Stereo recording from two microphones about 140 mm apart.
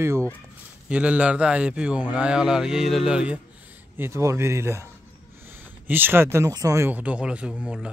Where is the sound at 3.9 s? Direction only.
20° right (ahead or behind).